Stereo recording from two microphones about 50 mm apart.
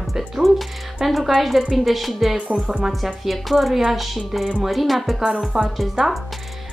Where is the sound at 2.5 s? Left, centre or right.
Right.